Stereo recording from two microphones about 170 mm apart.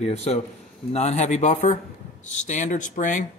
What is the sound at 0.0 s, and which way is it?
Speech, 40° left (ahead or behind).